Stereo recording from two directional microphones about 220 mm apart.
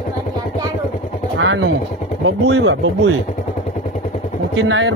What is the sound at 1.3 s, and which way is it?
Speech, 55° right (ahead or behind).